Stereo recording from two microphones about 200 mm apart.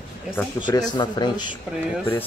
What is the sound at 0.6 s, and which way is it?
Speech, 20° left (ahead or behind).